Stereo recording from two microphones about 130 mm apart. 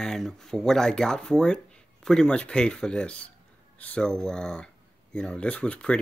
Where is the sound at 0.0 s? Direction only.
5° left (ahead or behind).